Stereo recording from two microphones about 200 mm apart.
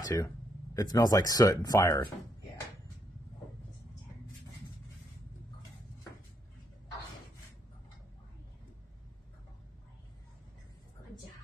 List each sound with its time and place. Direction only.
0.0 s speech: 15° left (ahead or behind)